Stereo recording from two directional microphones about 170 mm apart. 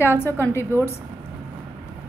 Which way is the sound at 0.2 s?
15° left (ahead or behind).